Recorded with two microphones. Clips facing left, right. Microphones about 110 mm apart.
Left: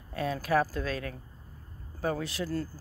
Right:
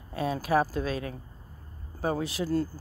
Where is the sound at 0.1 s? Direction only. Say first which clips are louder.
Right 2 dB; 15° right (ahead or behind).